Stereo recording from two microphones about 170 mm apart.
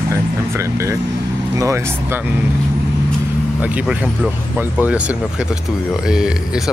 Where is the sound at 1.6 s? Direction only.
15° right (ahead or behind).